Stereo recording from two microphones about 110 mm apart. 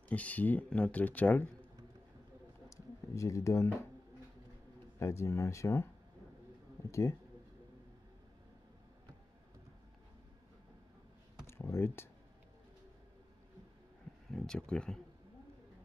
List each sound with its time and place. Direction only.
0.1 s speech: 15° left (ahead or behind)
2.7 s speech: 30° left (ahead or behind)
4.9 s speech: 25° left (ahead or behind)
11.4 s speech: 20° left (ahead or behind)
14.3 s speech: 5° left (ahead or behind)